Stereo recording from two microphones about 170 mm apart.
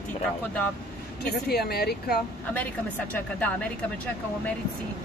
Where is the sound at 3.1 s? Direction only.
10° left (ahead or behind).